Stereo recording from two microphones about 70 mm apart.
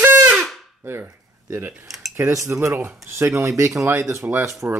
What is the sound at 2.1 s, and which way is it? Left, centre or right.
Speech, right.